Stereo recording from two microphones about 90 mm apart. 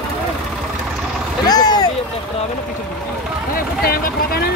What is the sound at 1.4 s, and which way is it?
Speech, 50° left (ahead or behind).